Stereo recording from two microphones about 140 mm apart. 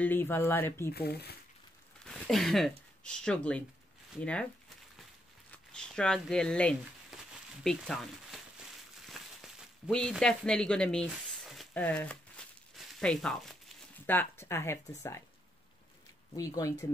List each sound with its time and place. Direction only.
0.0 s speech: 15° left (ahead or behind)
2.0 s speech: 5° left (ahead or behind)
5.5 s speech: 5° left (ahead or behind)
9.0 s a sound: centre (ahead or behind)
11.7 s crumpling: 10° left (ahead or behind)
14.0 s speech: 15° left (ahead or behind)
16.3 s speech: 25° left (ahead or behind)